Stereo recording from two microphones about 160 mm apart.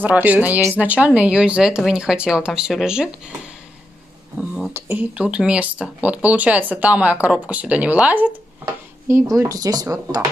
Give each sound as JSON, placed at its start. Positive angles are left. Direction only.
{"t": 0.0, "sound": "speech", "side_deg": -10}
{"t": 4.4, "sound": "speech", "side_deg": -10}
{"t": 9.1, "sound": "speech", "side_deg": -20}